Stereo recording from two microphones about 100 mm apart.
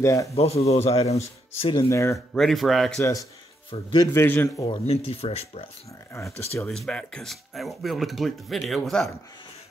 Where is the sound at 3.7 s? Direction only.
65° left (ahead or behind).